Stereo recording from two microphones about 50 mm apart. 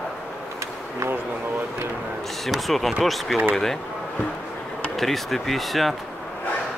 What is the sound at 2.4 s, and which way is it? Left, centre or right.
Speech, centre.